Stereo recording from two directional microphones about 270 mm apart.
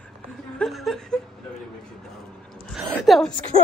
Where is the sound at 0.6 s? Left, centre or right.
Centre.